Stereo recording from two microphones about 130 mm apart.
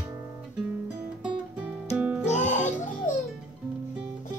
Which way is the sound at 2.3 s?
65° left (ahead or behind).